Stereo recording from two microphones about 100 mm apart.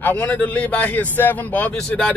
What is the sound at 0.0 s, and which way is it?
Speech, 15° left (ahead or behind).